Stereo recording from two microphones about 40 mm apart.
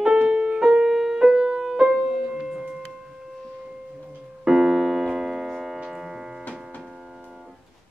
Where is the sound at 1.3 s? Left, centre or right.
Right.